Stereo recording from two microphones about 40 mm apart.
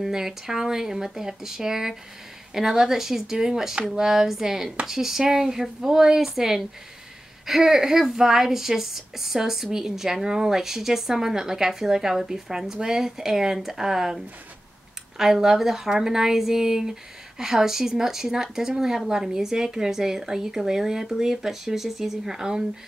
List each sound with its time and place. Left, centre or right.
0.0 s speech: centre
15.1 s speech: centre